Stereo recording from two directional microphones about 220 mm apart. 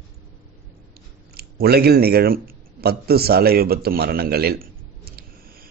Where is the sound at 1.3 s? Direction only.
45° right (ahead or behind).